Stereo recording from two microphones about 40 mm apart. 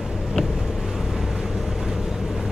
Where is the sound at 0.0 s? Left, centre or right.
Centre.